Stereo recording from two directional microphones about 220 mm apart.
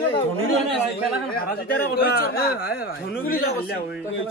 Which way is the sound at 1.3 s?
45° left (ahead or behind).